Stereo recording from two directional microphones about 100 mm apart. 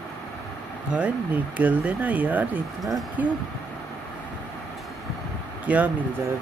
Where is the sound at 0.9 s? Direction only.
15° right (ahead or behind).